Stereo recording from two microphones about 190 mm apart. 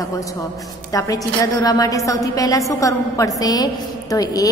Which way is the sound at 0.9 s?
20° left (ahead or behind).